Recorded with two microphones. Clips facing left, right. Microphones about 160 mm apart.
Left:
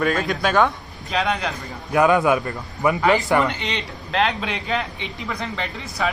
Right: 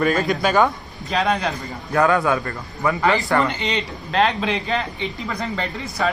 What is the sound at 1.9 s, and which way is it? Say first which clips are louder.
A man's voice: left 1 dB; 15° left (ahead or behind).